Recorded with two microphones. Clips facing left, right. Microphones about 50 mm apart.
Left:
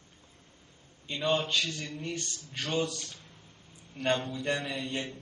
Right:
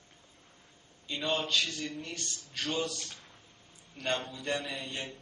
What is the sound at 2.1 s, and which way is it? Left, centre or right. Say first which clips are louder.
Speech: left 2 dB; left.